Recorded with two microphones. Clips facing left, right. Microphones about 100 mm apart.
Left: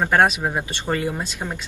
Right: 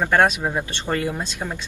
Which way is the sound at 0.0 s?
15° left (ahead or behind).